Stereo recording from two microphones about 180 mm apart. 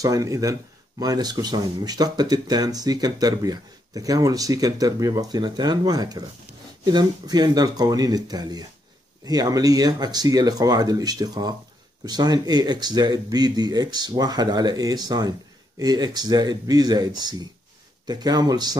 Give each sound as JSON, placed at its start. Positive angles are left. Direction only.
{"t": 0.0, "sound": "speech", "side_deg": -20}